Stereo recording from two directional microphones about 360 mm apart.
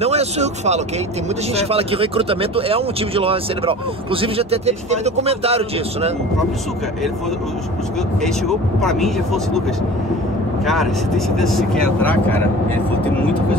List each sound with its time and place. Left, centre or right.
0.0 s speech: centre
8.2 s speech: centre
10.7 s speech: centre